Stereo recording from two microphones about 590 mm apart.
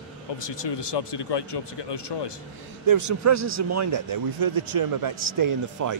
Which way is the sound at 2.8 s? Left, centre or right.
Right.